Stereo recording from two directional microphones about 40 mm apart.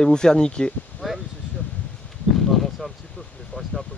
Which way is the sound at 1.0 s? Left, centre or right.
Centre.